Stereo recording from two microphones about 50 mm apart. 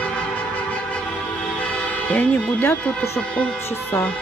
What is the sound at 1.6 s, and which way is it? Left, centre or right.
Speech, left.